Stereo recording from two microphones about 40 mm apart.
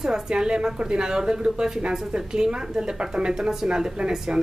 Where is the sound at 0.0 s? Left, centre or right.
Centre.